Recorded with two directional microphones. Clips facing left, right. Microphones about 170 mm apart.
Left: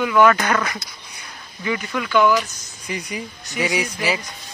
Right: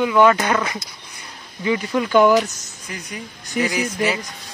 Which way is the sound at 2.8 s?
Centre (ahead or behind).